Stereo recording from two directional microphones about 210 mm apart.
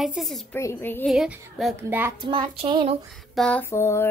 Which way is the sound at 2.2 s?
25° right (ahead or behind).